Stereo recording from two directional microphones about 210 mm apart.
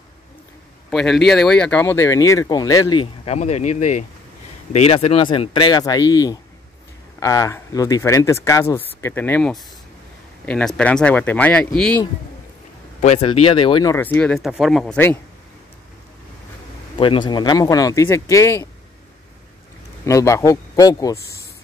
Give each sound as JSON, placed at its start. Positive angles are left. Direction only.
{"t": 0.8, "sound": "speech", "side_deg": 0}
{"t": 13.0, "sound": "speech", "side_deg": 30}
{"t": 16.9, "sound": "speech", "side_deg": 25}
{"t": 20.1, "sound": "speech", "side_deg": 15}